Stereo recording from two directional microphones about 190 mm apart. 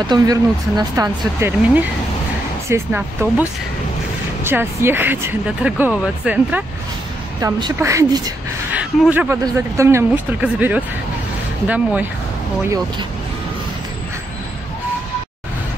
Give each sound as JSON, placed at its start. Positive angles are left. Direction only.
{"t": 0.0, "sound": "speech", "side_deg": -20}
{"t": 4.5, "sound": "speech", "side_deg": -10}
{"t": 7.4, "sound": "speech", "side_deg": -15}